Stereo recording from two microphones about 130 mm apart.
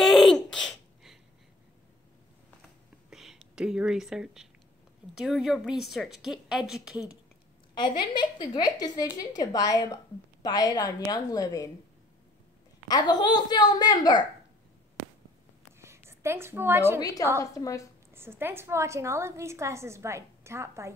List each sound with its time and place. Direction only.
0.0 s a sound: centre (ahead or behind)
3.1 s a woman's voice: 5° right (ahead or behind)
7.7 s a woman's voice: 35° left (ahead or behind)
12.8 s a woman's voice: 30° left (ahead or behind)
16.1 s a woman's voice: 20° right (ahead or behind)
17.0 s a woman's voice: 25° left (ahead or behind)
18.1 s a woman's voice: 20° right (ahead or behind)